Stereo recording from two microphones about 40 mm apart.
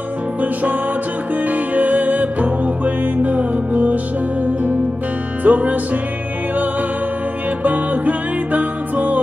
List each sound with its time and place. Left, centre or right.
1.4 s music: right
5.4 s music: right
7.6 s music: right